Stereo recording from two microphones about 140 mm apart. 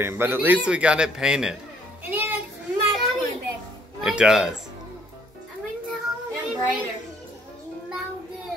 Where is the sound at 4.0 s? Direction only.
5° right (ahead or behind).